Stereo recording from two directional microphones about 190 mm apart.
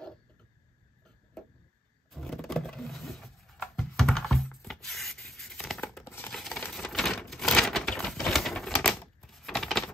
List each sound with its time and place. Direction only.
2.0 s a sound: centre (ahead or behind)
6.0 s coin: 10° left (ahead or behind)
6.3 s coin: centre (ahead or behind)
6.7 s typewriter: centre (ahead or behind)